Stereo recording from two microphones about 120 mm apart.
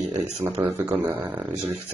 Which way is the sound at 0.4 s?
20° right (ahead or behind).